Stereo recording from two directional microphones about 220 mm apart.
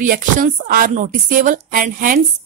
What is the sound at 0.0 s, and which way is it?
Speech, 40° right (ahead or behind).